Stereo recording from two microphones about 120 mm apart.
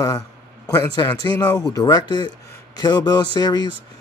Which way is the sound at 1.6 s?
30° left (ahead or behind).